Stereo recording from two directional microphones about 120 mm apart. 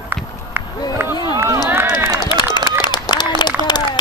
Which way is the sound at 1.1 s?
35° left (ahead or behind).